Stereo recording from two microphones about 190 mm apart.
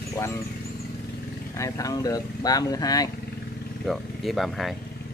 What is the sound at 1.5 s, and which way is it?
Speech, 15° left (ahead or behind).